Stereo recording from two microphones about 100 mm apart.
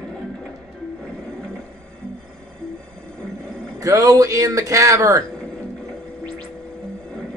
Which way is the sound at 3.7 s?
35° right (ahead or behind).